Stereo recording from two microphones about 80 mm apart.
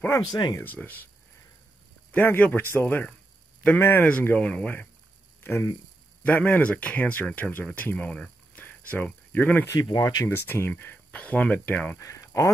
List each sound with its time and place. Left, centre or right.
0.3 s speech: left
0.7 s speech: left
2.1 s speech: left
5.4 s speech: left
9.8 s speech: left
10.2 s speech: left
12.0 s speech: left